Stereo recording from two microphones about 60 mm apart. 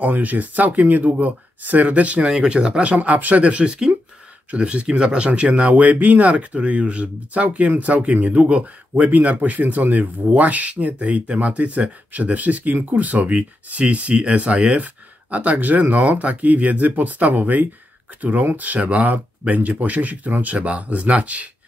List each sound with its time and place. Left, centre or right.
0.0 s speech: right